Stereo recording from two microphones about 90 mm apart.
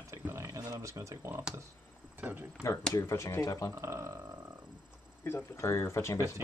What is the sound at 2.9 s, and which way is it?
Speech, 35° left (ahead or behind).